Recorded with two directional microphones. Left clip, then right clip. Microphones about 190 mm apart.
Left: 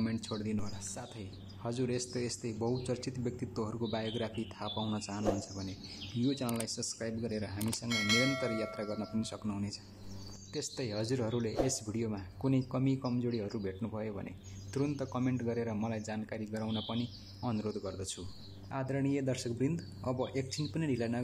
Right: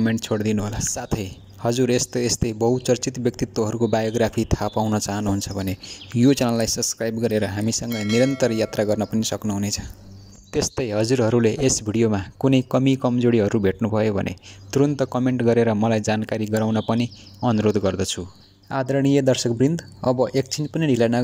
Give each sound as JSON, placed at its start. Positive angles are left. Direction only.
{"t": 0.0, "sound": "speech", "side_deg": -40}
{"t": 7.9, "sound": "speech", "side_deg": 0}
{"t": 8.4, "sound": "speech", "side_deg": -40}